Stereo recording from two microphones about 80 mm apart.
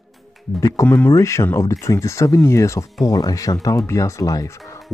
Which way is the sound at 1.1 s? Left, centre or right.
Left.